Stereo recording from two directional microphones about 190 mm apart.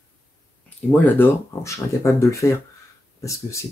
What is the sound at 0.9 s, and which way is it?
Speech, 10° left (ahead or behind).